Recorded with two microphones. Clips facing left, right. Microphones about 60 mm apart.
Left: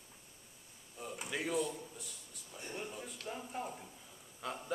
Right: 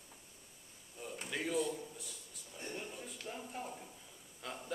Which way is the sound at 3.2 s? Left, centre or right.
Centre.